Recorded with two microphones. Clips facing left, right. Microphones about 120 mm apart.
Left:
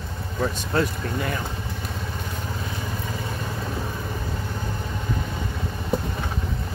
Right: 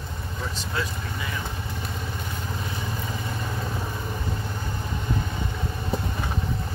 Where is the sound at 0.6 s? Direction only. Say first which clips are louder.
Left 6 dB; 55° left (ahead or behind).